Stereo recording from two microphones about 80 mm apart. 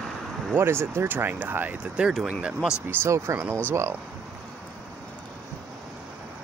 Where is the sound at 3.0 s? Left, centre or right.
Right.